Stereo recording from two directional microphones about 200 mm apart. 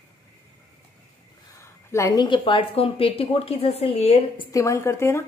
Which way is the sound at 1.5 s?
15° left (ahead or behind).